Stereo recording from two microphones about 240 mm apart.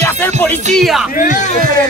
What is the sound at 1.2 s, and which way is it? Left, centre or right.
Speech, left.